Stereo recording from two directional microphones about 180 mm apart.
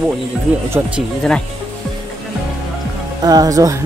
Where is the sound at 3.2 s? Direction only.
20° right (ahead or behind).